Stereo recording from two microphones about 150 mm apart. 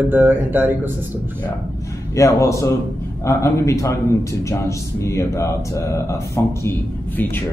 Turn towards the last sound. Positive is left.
turn(degrees=15)  # may be behind; listen again after turning